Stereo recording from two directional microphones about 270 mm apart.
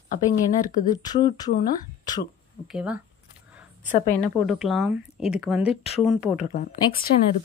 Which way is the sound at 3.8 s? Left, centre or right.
Left.